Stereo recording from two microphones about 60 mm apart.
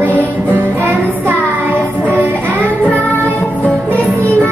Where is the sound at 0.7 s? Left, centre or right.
Right.